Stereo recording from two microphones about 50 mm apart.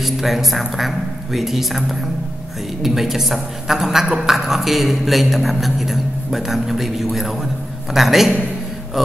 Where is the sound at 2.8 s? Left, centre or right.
Centre.